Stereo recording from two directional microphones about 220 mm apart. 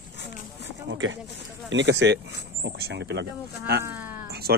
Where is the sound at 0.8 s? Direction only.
60° right (ahead or behind).